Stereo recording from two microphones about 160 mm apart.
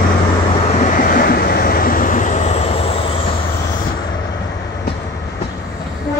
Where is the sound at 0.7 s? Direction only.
55° left (ahead or behind); by 3.1 s 40° left (ahead or behind).